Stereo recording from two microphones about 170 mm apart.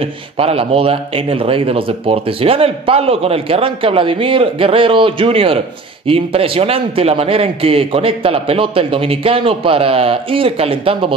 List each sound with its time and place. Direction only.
0.4 s speech: 35° right (ahead or behind)